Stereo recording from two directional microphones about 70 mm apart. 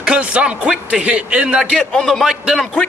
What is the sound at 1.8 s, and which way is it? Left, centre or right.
A man's voice, centre.